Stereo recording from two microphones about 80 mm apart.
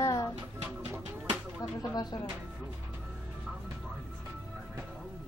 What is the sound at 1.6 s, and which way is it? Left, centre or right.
Speech, left.